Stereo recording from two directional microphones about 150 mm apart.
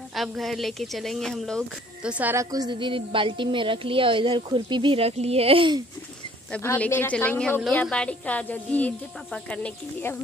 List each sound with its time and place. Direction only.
0.1 s speech: centre (ahead or behind)
2.0 s a woman's voice: 10° right (ahead or behind)
2.5 s a woman's voice: 30° right (ahead or behind)
6.5 s a woman's voice: 10° left (ahead or behind)